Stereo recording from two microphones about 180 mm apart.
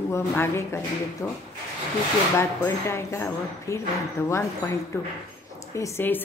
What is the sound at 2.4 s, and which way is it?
Speech, 15° left (ahead or behind).